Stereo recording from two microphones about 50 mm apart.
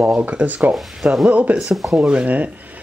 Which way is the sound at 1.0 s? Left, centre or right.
Right.